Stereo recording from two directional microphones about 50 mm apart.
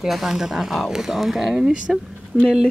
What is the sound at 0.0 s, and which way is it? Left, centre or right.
Speech, centre.